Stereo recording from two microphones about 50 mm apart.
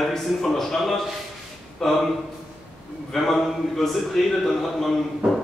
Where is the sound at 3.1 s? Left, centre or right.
Centre.